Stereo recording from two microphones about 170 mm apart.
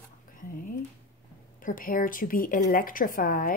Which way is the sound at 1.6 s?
55° left (ahead or behind).